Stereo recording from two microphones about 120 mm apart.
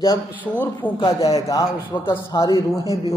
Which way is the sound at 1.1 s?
30° left (ahead or behind).